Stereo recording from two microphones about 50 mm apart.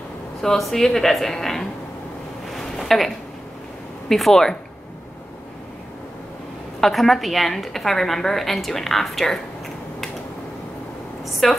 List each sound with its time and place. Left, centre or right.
0.4 s speech: centre
2.6 s a sound: centre
4.1 s speech: centre
6.8 s a woman's voice: centre
11.4 s a woman's voice: centre